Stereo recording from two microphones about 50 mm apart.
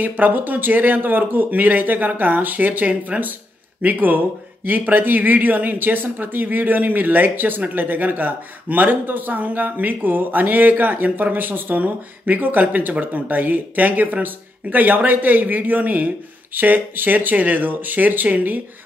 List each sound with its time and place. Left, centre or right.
0.0 s speech: right